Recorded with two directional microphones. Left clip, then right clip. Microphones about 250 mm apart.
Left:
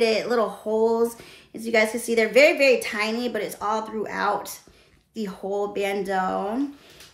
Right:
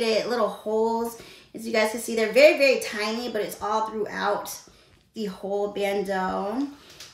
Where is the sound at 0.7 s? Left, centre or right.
Centre.